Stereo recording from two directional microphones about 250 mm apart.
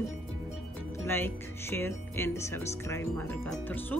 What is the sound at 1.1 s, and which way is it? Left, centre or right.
Speech, centre.